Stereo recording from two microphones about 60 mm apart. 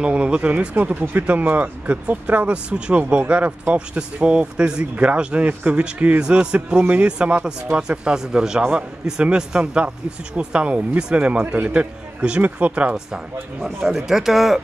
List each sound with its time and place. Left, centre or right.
0.0 s speech: centre
12.9 s speech: centre